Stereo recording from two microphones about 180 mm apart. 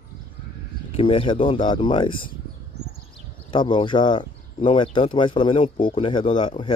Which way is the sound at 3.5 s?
25° left (ahead or behind).